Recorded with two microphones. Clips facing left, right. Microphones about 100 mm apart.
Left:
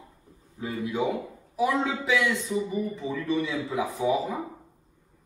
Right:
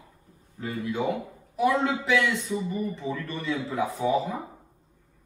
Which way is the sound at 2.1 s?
15° left (ahead or behind).